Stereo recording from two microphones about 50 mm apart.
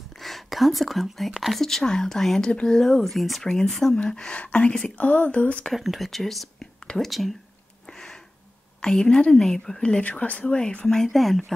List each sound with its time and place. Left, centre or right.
0.2 s speech: centre
3.9 s speech: centre
5.7 s speech: centre
8.8 s speech: centre
10.0 s speech: left
11.0 s speech: centre